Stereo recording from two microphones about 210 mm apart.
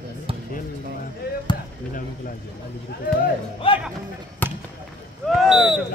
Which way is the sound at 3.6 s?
25° left (ahead or behind).